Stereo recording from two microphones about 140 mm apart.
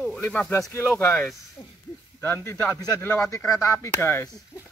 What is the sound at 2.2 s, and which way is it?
Speech, 20° left (ahead or behind).